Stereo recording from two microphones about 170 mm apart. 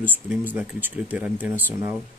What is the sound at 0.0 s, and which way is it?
Speech, 10° right (ahead or behind).